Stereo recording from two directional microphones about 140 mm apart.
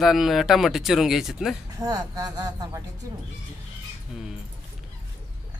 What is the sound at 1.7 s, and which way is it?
Speech, 25° right (ahead or behind).